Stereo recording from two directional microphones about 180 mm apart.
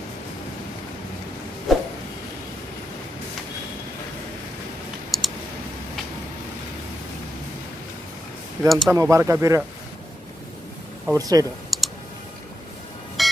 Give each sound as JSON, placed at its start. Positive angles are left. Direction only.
{"t": 1.7, "sound": "a sound", "side_deg": 0}
{"t": 5.1, "sound": "clicking", "side_deg": 0}
{"t": 8.6, "sound": "speech", "side_deg": 0}
{"t": 8.9, "sound": "speech", "side_deg": -15}
{"t": 11.1, "sound": "speech", "side_deg": -20}
{"t": 11.7, "sound": "clicking", "side_deg": 0}
{"t": 13.2, "sound": "music", "side_deg": 0}